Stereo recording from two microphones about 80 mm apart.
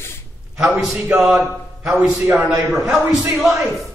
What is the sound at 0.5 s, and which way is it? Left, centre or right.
Speech, centre.